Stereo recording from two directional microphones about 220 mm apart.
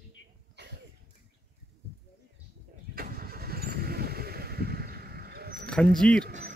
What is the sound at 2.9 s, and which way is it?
Vehicle, 40° right (ahead or behind).